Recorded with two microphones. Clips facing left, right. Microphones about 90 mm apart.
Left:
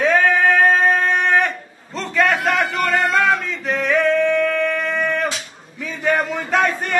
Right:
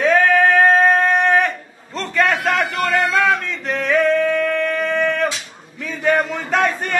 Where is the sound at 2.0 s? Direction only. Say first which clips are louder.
Even; centre (ahead or behind).